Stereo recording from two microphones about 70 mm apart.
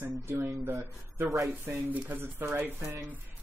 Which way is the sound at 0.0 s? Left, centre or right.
Right.